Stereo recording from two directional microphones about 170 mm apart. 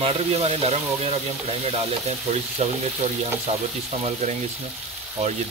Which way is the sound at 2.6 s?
40° right (ahead or behind).